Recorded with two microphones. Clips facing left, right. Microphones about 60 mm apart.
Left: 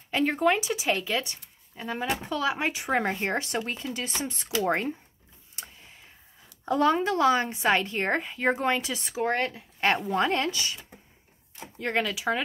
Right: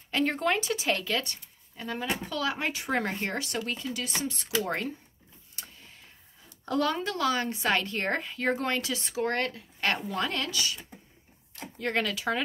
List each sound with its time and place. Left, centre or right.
0.1 s speech: centre; by 4.9 s left
6.6 s speech: left
11.6 s speech: centre